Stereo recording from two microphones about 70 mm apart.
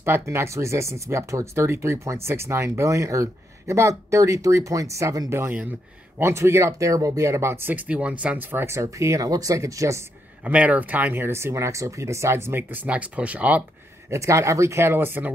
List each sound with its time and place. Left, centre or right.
0.0 s speech: right
7.7 s speech: centre
8.5 s speech: right
10.4 s speech: centre
11.2 s speech: right; by 13.7 s centre
14.1 s speech: right